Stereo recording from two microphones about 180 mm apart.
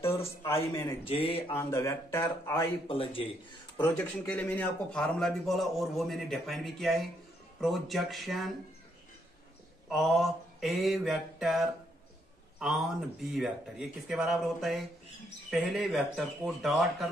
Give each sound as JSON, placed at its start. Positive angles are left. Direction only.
{"t": 0.4, "sound": "speech", "side_deg": 15}
{"t": 1.0, "sound": "speech", "side_deg": 30}
{"t": 1.5, "sound": "speech", "side_deg": 15}
{"t": 2.9, "sound": "speech", "side_deg": 30}
{"t": 3.8, "sound": "a man's voice", "side_deg": 10}
{"t": 9.8, "sound": "mantra", "side_deg": 0}
{"t": 12.5, "sound": "a man's voice", "side_deg": -5}